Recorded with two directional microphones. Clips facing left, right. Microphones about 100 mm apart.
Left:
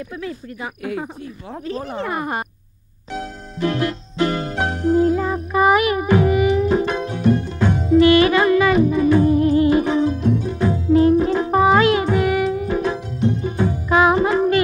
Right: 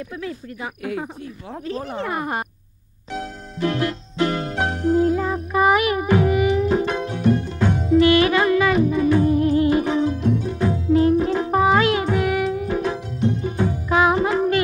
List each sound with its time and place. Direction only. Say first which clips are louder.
0.2 s speech: left 1 dB; 30° left (ahead or behind)
3.1 s music: left 1 dB; 30° left (ahead or behind)